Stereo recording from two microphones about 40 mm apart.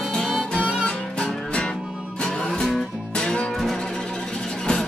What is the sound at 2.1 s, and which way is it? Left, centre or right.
Music, left.